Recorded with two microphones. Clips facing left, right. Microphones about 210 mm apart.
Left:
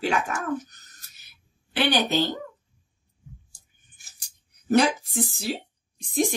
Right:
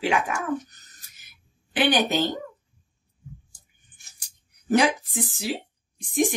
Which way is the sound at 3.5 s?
10° left (ahead or behind).